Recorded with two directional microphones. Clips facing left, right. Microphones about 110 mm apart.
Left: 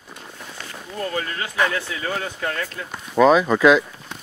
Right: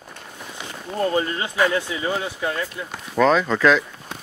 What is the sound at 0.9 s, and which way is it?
Speech, 30° right (ahead or behind).